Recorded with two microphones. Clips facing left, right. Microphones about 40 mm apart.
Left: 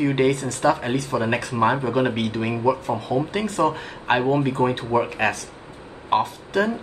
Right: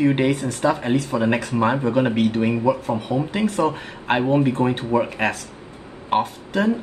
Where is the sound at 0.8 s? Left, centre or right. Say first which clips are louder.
Right 3 dB; centre.